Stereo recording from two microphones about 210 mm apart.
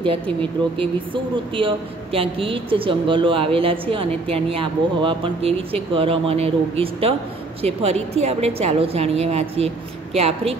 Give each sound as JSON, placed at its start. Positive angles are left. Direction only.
{"t": 0.0, "sound": "speech", "side_deg": -25}